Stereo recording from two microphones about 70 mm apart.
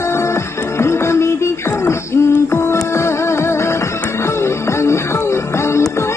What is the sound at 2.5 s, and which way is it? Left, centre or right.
Music, left.